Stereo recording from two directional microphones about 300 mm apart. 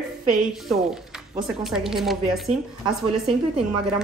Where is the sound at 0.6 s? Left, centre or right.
Centre.